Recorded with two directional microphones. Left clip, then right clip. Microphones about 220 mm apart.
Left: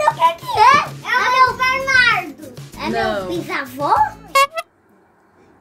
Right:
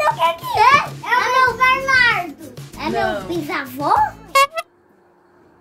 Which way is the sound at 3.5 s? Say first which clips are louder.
Even; 5° right (ahead or behind).